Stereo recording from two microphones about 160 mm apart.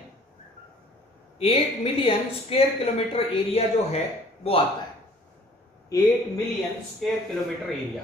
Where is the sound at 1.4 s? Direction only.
40° left (ahead or behind).